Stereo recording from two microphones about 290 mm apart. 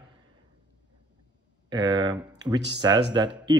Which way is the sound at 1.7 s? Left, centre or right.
Centre.